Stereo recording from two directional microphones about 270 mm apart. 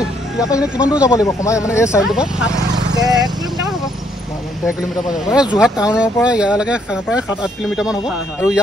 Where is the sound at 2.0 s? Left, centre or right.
Centre.